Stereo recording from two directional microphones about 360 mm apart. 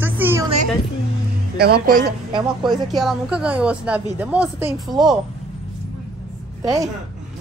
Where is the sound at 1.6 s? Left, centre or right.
Right.